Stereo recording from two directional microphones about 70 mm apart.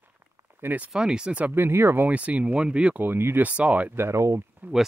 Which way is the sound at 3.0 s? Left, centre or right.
Right.